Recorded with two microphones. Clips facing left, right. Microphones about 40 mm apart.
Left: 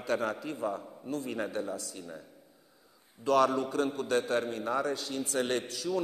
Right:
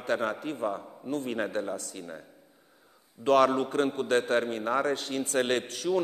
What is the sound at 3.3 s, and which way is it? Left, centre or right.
A man's voice, right.